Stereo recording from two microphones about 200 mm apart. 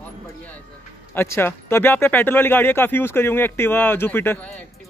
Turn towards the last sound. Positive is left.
turn(degrees=10)  # may be behind; listen again after turning